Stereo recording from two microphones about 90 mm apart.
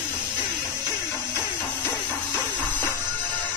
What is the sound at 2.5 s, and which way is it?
Music, 15° left (ahead or behind).